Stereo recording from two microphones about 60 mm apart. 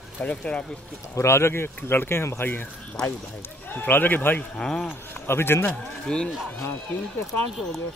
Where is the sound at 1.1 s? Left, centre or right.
Left.